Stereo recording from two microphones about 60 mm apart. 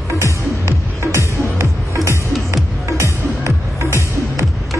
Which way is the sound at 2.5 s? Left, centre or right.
Right.